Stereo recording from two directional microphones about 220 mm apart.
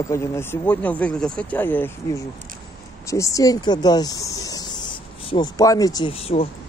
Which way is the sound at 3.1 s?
15° left (ahead or behind).